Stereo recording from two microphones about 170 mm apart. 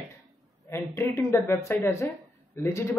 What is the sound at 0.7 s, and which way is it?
Speech, 15° left (ahead or behind).